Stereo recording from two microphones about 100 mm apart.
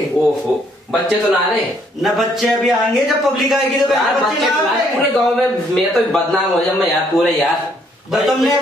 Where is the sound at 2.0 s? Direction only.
Centre (ahead or behind).